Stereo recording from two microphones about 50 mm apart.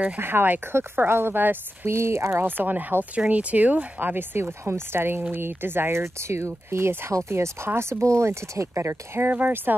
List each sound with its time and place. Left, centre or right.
0.2 s speech: right
1.9 s speech: right
2.4 s speech: right
4.6 s speech: right
9.3 s speech: right